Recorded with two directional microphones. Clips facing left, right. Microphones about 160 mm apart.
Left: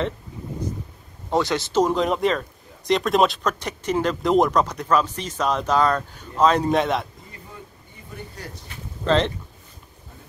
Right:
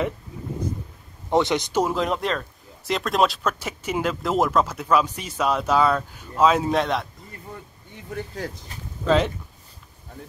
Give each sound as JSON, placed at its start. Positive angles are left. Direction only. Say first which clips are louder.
{"t": 1.3, "sound": "speech", "louder": "even", "side_deg": -20}
{"t": 8.4, "sound": "speech", "louder": "right 6 dB", "side_deg": -90}
{"t": 9.0, "sound": "speech", "louder": "even", "side_deg": -10}